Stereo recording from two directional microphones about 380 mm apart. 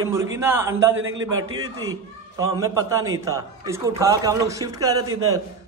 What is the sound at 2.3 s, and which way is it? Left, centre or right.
A man's voice, centre.